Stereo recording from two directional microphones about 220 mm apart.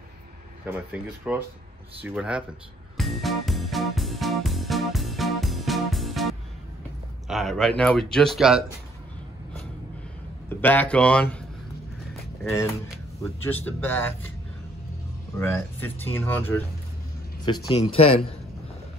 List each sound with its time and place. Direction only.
0.7 s speech: 10° right (ahead or behind)
3.0 s music: centre (ahead or behind)
7.2 s speech: centre (ahead or behind)
10.5 s speech: 10° left (ahead or behind)
12.9 s speech: 5° left (ahead or behind)
15.3 s speech: 10° left (ahead or behind)
17.5 s speech: 20° left (ahead or behind)